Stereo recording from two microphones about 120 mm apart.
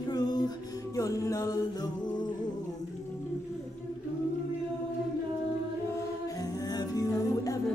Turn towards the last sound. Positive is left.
turn(degrees=30)  # may be behind; listen again after turning